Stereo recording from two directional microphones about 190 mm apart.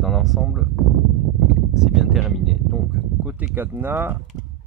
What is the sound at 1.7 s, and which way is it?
Speech, centre (ahead or behind).